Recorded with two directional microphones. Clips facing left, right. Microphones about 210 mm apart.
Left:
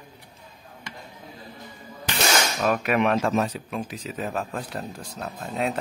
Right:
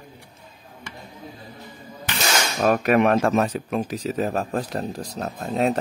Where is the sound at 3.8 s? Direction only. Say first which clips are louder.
Right 6 dB; 40° right (ahead or behind).